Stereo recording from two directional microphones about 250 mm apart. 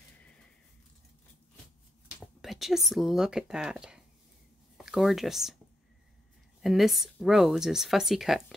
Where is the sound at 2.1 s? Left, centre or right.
Centre.